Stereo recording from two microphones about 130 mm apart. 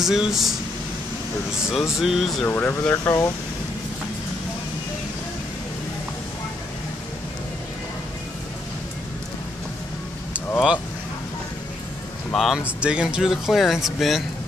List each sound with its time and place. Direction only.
0.0 s speech: centre (ahead or behind)
2.4 s speech: 15° left (ahead or behind)
12.3 s speech: centre (ahead or behind)